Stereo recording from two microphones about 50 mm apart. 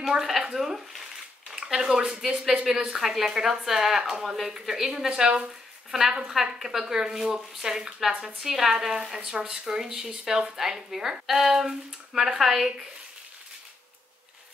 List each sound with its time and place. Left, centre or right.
0.1 s a woman's voice: centre